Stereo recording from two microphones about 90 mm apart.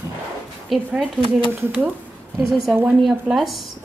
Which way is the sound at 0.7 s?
Centre (ahead or behind).